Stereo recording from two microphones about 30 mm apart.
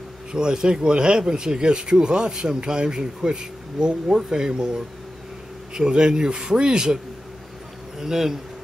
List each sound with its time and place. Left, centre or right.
0.3 s speech: right
8.0 s a man's voice: centre